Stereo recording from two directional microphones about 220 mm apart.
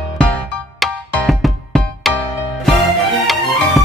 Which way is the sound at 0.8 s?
Centre (ahead or behind).